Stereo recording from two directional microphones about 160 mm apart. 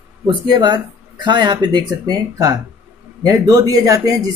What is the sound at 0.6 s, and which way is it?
Speech, 30° right (ahead or behind).